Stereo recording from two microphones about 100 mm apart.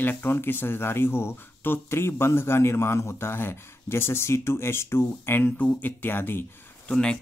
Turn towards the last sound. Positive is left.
turn(degrees=10)  # may be behind; listen again after turning